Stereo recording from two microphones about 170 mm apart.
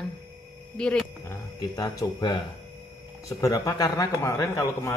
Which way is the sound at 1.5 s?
25° left (ahead or behind).